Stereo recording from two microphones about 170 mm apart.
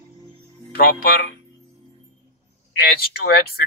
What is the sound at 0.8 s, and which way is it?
Speech, 60° left (ahead or behind).